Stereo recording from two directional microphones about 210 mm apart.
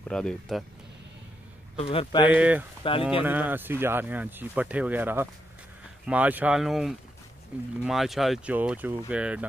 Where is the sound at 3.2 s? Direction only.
10° right (ahead or behind).